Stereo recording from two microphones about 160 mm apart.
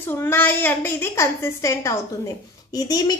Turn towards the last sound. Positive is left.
turn(degrees=25)  # may be behind; listen again after turning